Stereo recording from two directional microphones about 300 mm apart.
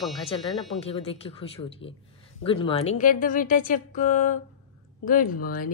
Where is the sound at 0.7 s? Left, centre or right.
Centre.